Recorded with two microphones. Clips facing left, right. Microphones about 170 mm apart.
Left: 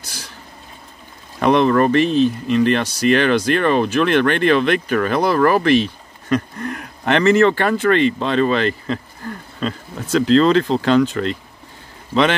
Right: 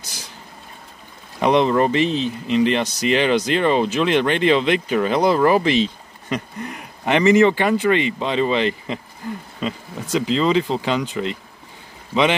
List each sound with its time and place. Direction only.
1.4 s a man's voice: 15° right (ahead or behind)